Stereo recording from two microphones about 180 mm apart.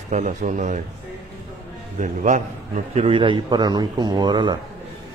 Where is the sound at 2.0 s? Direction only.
40° right (ahead or behind).